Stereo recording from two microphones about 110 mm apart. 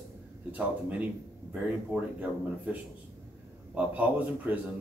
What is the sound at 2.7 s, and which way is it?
Speech, 15° right (ahead or behind).